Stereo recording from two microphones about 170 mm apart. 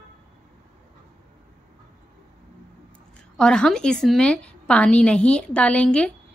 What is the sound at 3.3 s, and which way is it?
A woman's voice, 5° left (ahead or behind).